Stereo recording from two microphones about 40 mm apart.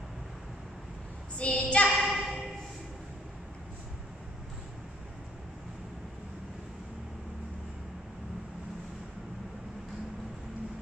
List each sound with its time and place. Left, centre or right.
1.4 s child singing: left
1.9 s child singing: centre